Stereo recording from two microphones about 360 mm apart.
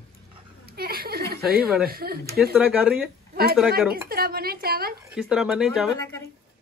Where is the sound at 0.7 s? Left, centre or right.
Right.